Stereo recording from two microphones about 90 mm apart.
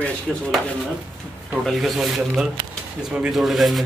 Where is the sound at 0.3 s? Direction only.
Centre (ahead or behind).